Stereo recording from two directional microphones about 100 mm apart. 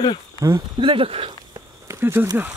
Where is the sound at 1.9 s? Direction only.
25° right (ahead or behind).